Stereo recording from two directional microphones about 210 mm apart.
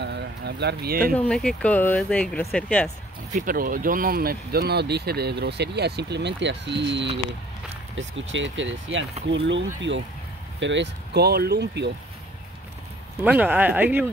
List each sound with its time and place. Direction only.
0.0 s a sound: 55° right (ahead or behind)
1.1 s speech: 5° left (ahead or behind)
3.3 s speech: 45° right (ahead or behind)
13.2 s speech: 5° right (ahead or behind)